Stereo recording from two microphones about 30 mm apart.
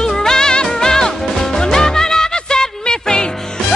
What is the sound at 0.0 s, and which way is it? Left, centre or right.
Music, centre.